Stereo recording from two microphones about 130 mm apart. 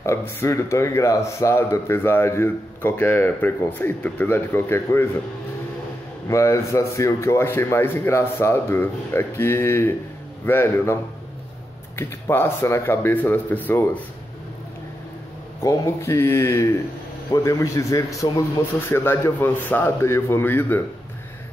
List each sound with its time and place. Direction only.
0.0 s speech: 20° left (ahead or behind)
6.2 s a man's voice: 20° left (ahead or behind)
12.0 s a man's voice: 20° left (ahead or behind)
15.6 s a man's voice: 25° left (ahead or behind)